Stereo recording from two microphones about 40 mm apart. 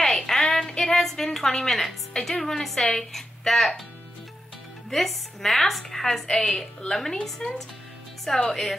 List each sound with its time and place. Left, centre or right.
0.0 s a sound: centre
0.9 s a woman's voice: centre
4.8 s a woman's voice: centre